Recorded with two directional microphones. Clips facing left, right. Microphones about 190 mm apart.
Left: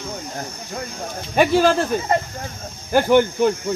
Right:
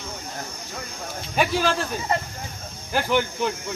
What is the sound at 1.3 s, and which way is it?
Speech, 50° left (ahead or behind).